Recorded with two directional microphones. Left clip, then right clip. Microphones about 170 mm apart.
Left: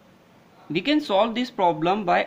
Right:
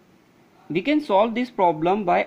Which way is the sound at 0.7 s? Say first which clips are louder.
Right 2 dB; 20° right (ahead or behind).